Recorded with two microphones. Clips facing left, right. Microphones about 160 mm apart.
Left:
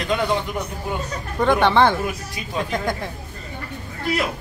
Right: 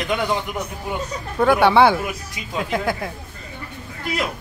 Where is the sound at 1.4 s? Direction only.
10° right (ahead or behind).